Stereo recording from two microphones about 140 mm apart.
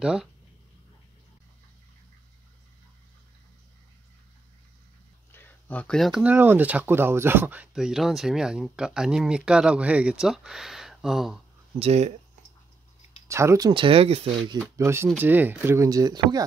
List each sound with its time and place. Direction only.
0.0 s speech: 5° right (ahead or behind)
5.3 s a sound: 15° left (ahead or behind)
6.2 s speech: 15° right (ahead or behind)
11.8 s speech: 50° right (ahead or behind)
13.3 s speech: 20° right (ahead or behind); by 14.4 s 45° right (ahead or behind)
14.8 s speech: 20° right (ahead or behind)